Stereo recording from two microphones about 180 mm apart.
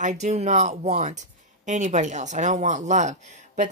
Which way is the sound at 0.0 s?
40° right (ahead or behind).